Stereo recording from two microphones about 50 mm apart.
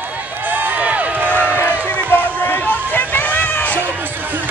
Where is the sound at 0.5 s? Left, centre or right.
Right.